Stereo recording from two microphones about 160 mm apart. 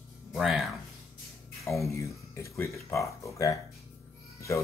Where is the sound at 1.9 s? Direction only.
20° left (ahead or behind).